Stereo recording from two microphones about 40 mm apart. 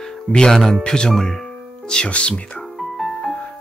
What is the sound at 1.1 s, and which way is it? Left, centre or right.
Music, centre.